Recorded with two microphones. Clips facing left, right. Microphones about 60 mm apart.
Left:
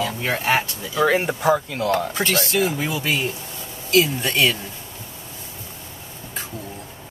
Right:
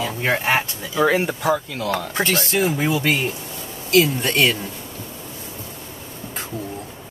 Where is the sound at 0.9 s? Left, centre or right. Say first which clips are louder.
Right 1 dB; centre.